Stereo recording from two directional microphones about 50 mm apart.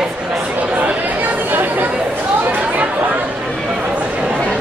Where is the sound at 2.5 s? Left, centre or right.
Right.